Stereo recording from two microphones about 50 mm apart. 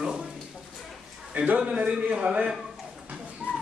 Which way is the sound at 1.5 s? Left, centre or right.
Right.